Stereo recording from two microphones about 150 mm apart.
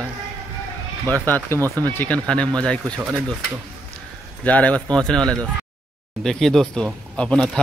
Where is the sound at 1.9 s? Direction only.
10° left (ahead or behind).